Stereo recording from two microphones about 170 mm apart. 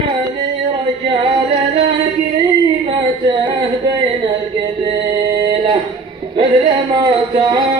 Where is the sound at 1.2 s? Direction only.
30° right (ahead or behind).